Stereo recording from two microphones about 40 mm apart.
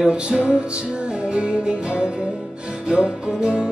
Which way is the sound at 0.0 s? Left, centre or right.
Right.